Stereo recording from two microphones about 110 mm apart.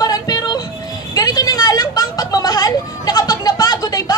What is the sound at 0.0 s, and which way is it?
Music, 35° left (ahead or behind).